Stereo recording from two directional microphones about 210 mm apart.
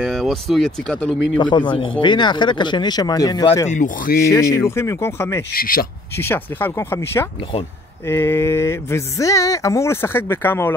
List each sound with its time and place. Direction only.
0.0 s speech: centre (ahead or behind)
1.4 s speech: 20° left (ahead or behind)
3.6 s speech: 35° left (ahead or behind)
4.3 s speech: 15° left (ahead or behind)
5.5 s speech: 45° left (ahead or behind)
6.1 s speech: 10° left (ahead or behind)